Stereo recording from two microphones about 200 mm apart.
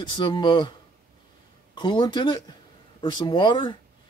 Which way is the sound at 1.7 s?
25° left (ahead or behind).